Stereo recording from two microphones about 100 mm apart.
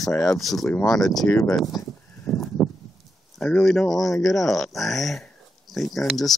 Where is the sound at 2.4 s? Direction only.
Centre (ahead or behind).